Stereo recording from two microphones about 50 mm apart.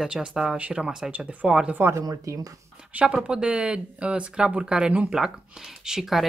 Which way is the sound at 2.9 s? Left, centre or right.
Right.